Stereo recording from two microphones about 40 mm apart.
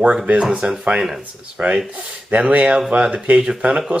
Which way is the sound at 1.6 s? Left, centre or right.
Right.